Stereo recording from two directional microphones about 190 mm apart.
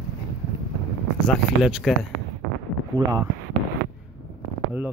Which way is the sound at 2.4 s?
90° right.